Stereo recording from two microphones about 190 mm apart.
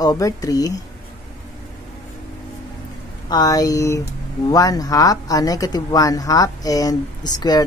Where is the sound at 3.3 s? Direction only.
20° left (ahead or behind).